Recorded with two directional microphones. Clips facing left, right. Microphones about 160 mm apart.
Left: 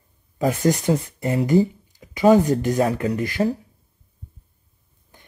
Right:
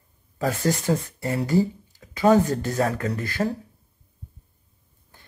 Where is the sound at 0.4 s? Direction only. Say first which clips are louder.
Left 4 dB; 20° left (ahead or behind).